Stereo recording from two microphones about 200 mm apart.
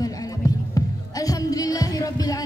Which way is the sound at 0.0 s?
15° left (ahead or behind).